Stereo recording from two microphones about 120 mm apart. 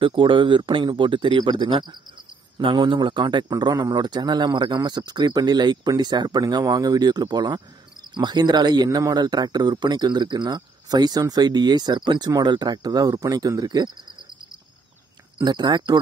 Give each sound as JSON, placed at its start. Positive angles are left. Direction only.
{"t": 0.0, "sound": "a man's voice", "side_deg": -45}
{"t": 15.4, "sound": "a man's voice", "side_deg": -35}